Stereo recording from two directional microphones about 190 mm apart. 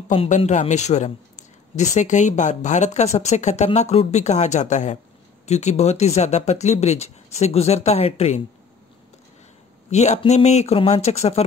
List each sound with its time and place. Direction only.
0.1 s speech: 30° left (ahead or behind)
9.8 s speech: 35° left (ahead or behind)